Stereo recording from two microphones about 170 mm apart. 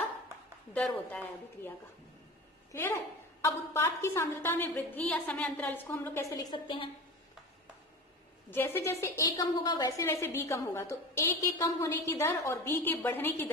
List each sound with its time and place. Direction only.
0.7 s a woman's voice: 10° left (ahead or behind)
2.7 s a woman's voice: 15° left (ahead or behind)
8.5 s a woman's voice: 15° left (ahead or behind)